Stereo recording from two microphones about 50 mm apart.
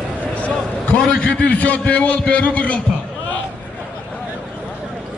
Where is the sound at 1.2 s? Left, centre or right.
Left.